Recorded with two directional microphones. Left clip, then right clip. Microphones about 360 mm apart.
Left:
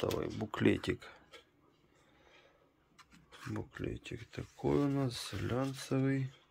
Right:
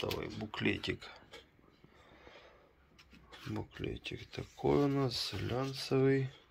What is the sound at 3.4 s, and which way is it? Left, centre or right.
Speech, centre.